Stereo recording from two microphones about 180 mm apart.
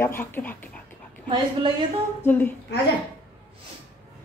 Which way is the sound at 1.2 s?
25° right (ahead or behind).